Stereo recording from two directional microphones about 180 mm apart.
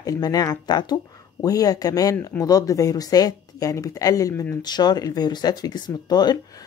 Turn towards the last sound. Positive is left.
turn(degrees=20)  # may be behind; listen again after turning